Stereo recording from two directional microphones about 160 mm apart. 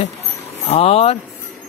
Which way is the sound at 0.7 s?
40° left (ahead or behind).